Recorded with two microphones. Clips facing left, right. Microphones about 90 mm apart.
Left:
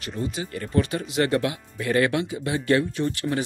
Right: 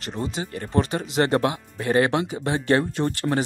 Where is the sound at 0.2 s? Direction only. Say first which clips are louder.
Even; 30° right (ahead or behind).